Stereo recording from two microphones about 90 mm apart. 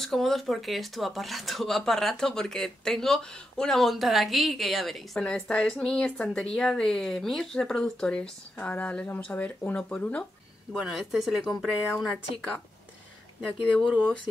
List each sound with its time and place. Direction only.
0.0 s speech: 5° left (ahead or behind)
10.7 s speech: 5° right (ahead or behind)